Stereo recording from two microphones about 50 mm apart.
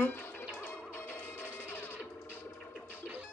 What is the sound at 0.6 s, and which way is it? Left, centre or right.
Music, left.